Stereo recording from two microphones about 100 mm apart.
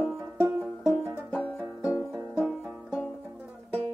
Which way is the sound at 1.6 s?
5° right (ahead or behind).